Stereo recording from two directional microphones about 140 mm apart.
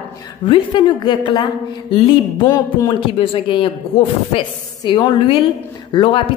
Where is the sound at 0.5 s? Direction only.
35° left (ahead or behind).